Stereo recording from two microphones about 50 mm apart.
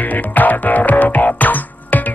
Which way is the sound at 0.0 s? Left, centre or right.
Left.